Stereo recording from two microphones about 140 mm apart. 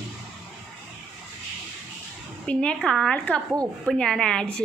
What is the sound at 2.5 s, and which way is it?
A woman's voice, 5° left (ahead or behind).